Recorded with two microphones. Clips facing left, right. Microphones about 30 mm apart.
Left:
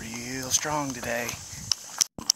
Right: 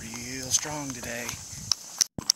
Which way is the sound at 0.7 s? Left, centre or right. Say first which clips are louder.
Left 6 dB; left.